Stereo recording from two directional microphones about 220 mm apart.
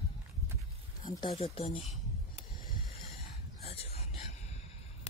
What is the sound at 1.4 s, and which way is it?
Speech, 30° left (ahead or behind).